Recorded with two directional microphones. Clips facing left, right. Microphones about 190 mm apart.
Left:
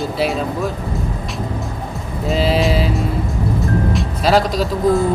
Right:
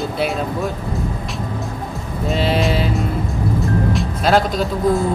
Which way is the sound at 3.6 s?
Centre (ahead or behind).